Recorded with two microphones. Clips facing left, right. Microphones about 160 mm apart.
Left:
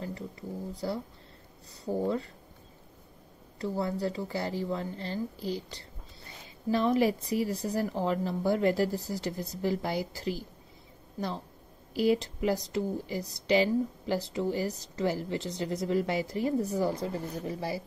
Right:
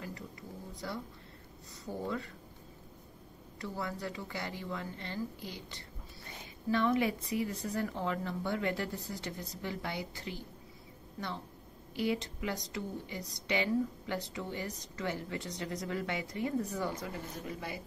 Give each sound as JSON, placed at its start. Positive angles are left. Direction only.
{"t": 0.0, "sound": "speech", "side_deg": 30}
{"t": 3.5, "sound": "speech", "side_deg": 30}